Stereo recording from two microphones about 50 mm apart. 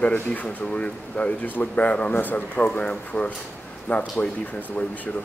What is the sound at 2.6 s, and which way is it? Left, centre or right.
Speech, left.